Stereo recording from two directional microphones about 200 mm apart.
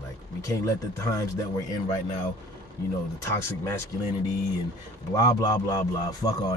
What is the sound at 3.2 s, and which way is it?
Speech, 15° left (ahead or behind).